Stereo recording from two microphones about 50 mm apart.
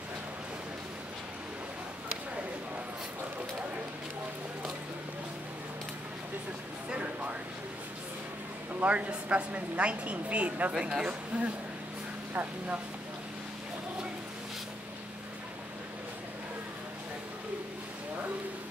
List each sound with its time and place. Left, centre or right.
6.9 s a sound: right
8.8 s speech: right
10.7 s speech: centre